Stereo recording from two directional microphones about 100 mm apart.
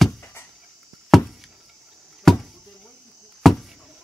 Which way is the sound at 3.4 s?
Centre (ahead or behind).